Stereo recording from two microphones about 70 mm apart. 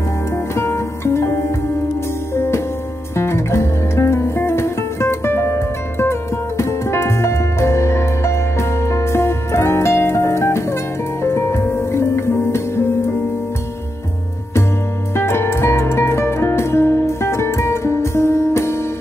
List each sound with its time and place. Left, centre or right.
0.6 s music: left
15.1 s music: left